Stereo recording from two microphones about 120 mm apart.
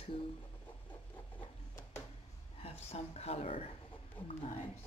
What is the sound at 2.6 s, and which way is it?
Speech, 60° left (ahead or behind).